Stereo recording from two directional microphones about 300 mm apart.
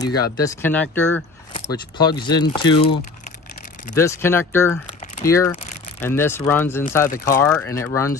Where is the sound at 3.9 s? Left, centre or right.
Centre.